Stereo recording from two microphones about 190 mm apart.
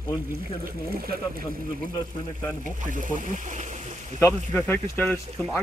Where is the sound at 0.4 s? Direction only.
50° right (ahead or behind).